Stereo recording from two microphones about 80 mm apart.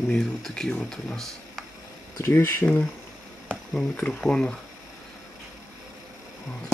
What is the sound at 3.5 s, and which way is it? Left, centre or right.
Speech, centre.